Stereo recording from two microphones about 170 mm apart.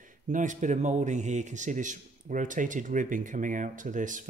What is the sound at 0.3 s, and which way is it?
A man's voice, 45° right (ahead or behind).